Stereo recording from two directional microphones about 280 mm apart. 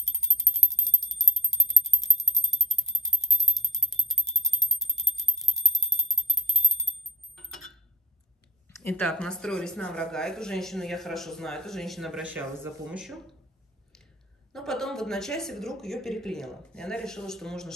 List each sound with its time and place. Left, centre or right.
0.0 s bicycle bell: centre
7.3 s a sound: centre
8.7 s speech: centre
14.5 s speech: centre